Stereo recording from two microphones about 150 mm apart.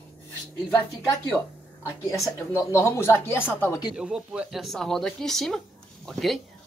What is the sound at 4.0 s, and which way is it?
Speech, 5° right (ahead or behind).